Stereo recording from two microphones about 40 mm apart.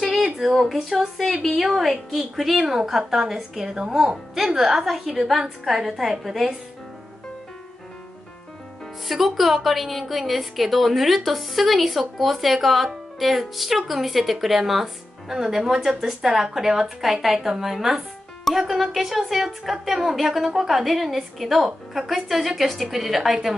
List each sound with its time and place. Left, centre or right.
0.8 s a woman's voice: centre
9.0 s a woman's voice: centre